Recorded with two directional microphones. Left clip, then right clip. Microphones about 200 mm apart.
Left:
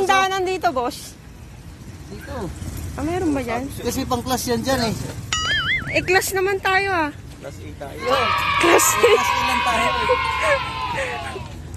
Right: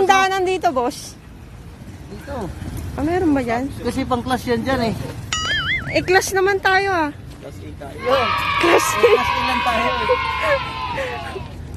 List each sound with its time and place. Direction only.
0.0 s a sound: 15° right (ahead or behind)
3.0 s speech: 20° right (ahead or behind)
3.8 s speech: 20° left (ahead or behind)
5.3 s music: centre (ahead or behind)
5.9 s speech: 15° right (ahead or behind)